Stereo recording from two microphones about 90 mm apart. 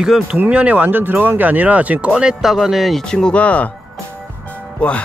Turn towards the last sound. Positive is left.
turn(degrees=15)  # may be behind; listen again after turning